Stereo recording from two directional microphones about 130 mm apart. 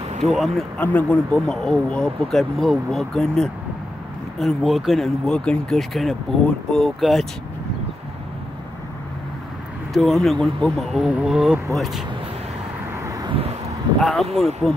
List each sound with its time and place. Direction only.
0.2 s speech: centre (ahead or behind)
0.7 s speech: 15° left (ahead or behind)
9.9 s speech: centre (ahead or behind)
12.9 s vehicle: 25° right (ahead or behind)
13.3 s vehicle: 50° right (ahead or behind)
14.0 s speech: centre (ahead or behind)